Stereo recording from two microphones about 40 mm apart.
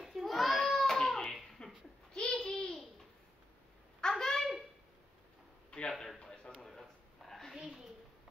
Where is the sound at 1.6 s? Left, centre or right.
Left.